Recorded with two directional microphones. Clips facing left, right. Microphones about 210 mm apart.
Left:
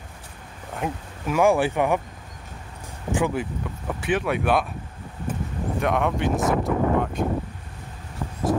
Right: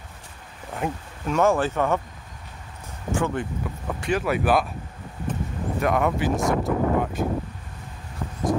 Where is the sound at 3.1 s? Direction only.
15° left (ahead or behind).